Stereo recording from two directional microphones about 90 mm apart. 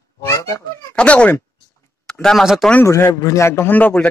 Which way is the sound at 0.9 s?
10° left (ahead or behind).